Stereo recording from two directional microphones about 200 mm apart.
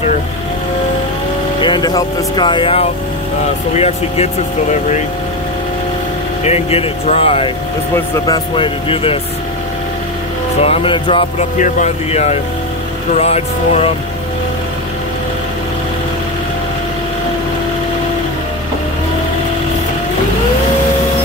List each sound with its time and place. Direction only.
1.6 s speech: 20° left (ahead or behind)
6.4 s speech: 30° left (ahead or behind)
10.6 s speech: 30° left (ahead or behind)
11.5 s speech: 35° left (ahead or behind)